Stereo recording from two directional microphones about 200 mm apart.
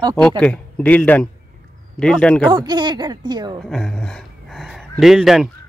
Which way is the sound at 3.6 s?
Centre (ahead or behind).